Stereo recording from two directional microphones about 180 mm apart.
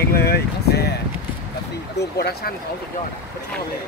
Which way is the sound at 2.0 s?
65° left (ahead or behind).